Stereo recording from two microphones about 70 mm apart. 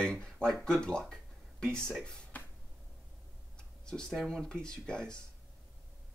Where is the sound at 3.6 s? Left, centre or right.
Centre.